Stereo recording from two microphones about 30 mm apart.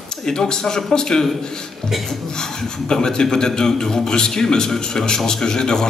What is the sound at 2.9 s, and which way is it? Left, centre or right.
Speech, centre.